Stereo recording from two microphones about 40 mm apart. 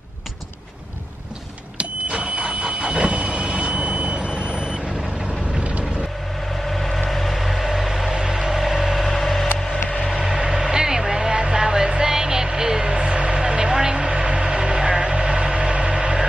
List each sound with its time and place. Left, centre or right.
1.8 s vehicle: right
4.3 s vehicle: left
6.6 s vehicle: centre
9.6 s a sound: centre
10.2 s vehicle: centre